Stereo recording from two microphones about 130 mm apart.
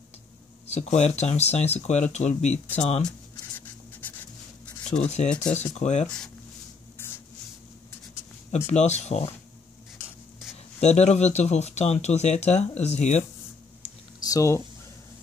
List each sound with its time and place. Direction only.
0.7 s speech: 60° left (ahead or behind)
3.0 s a sound: 10° left (ahead or behind)
5.0 s speech: 60° left (ahead or behind)
8.5 s speech: 60° left (ahead or behind)
10.8 s speech: 60° left (ahead or behind)
14.2 s speech: 25° left (ahead or behind)